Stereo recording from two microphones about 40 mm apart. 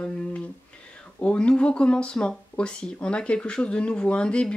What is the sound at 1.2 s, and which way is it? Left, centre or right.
Speech, left.